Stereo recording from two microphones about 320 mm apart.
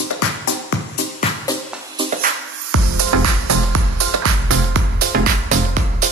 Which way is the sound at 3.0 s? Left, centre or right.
Right.